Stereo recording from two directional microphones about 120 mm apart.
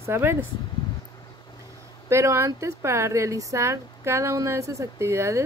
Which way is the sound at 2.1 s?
25° right (ahead or behind).